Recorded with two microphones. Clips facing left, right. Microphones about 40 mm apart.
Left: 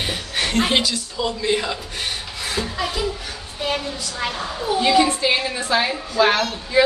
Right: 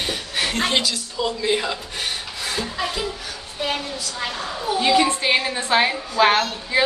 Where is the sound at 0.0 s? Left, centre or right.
Centre.